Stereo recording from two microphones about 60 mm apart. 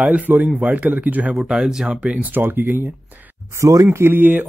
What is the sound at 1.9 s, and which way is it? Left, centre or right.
Speech, right.